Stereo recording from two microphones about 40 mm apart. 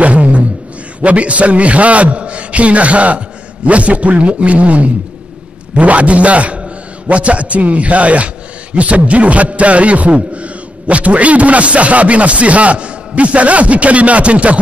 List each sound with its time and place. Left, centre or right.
0.0 s beatboxing: right
1.0 s a man's voice: right